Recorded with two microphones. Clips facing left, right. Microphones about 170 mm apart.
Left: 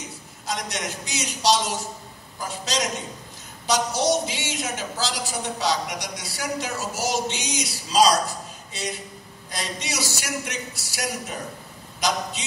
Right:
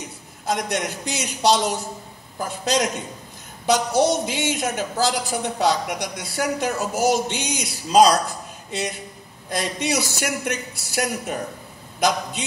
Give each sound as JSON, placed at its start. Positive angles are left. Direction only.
{"t": 0.5, "sound": "a woman's voice", "side_deg": -55}
{"t": 9.5, "sound": "a woman's voice", "side_deg": -55}